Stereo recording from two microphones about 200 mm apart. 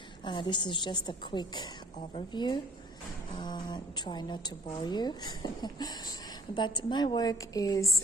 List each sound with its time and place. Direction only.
0.2 s a woman's voice: 25° left (ahead or behind)